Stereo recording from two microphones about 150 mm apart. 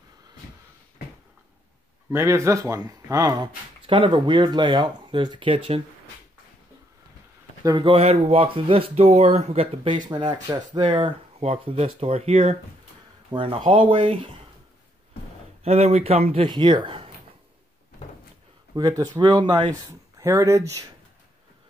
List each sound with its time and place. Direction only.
2.0 s speech: 20° right (ahead or behind); by 5.8 s 35° right (ahead or behind)
7.6 s speech: 35° right (ahead or behind)
10.0 s speech: 30° right (ahead or behind)
15.6 s speech: 45° right (ahead or behind)
16.4 s speech: 30° right (ahead or behind)
18.8 s speech: 25° right (ahead or behind)